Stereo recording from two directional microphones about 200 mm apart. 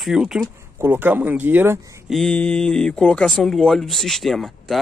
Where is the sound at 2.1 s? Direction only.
5° left (ahead or behind).